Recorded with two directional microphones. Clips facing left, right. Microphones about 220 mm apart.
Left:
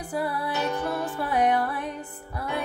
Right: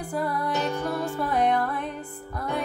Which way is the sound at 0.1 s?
5° left (ahead or behind).